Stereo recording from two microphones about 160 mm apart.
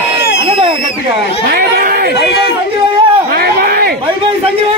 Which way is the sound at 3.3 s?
75° right (ahead or behind).